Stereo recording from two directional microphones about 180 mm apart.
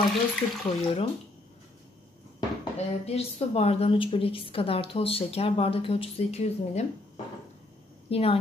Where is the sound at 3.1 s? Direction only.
35° left (ahead or behind).